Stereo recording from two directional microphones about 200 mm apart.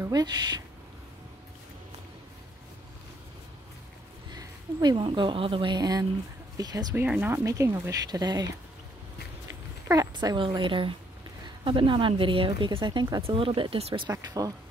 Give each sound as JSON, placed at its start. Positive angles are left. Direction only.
{"t": 0.0, "sound": "a woman's voice", "side_deg": -20}
{"t": 4.3, "sound": "a woman's voice", "side_deg": -20}
{"t": 9.5, "sound": "a woman's voice", "side_deg": -15}
{"t": 14.0, "sound": "speech", "side_deg": -20}